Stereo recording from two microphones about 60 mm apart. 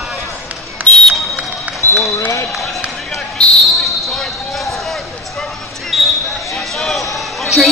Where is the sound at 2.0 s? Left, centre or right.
Left.